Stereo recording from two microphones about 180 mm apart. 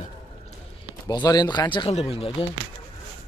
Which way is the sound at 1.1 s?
20° left (ahead or behind).